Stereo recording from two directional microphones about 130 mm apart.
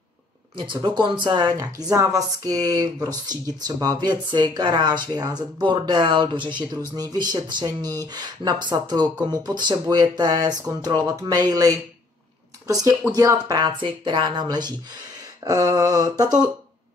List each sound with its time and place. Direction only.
0.6 s speech: 35° right (ahead or behind)
11.1 s mantra: 30° right (ahead or behind)
12.6 s speech: 25° right (ahead or behind)
15.4 s mantra: 25° right (ahead or behind)